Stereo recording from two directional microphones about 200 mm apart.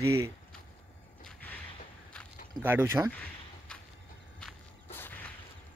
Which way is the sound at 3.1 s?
10° left (ahead or behind).